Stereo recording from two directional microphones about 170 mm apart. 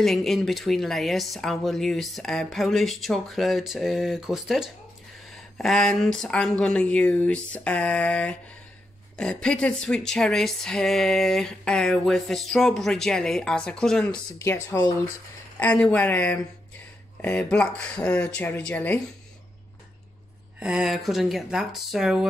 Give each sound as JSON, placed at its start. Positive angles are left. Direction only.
{"t": 0.0, "sound": "speech", "side_deg": 0}
{"t": 14.4, "sound": "speech", "side_deg": 15}
{"t": 20.5, "sound": "speech", "side_deg": -5}